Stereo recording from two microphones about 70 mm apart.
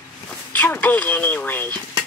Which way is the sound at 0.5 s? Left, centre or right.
Left.